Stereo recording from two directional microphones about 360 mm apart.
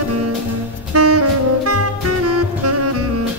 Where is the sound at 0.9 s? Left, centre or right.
Right.